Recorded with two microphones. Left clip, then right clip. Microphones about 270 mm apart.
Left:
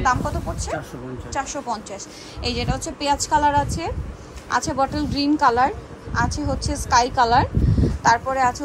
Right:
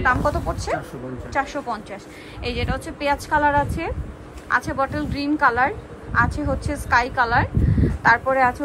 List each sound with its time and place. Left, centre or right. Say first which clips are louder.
0.0 s a woman's voice: right 2 dB; centre